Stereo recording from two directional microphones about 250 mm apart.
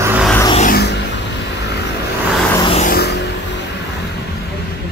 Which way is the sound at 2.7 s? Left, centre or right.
Left.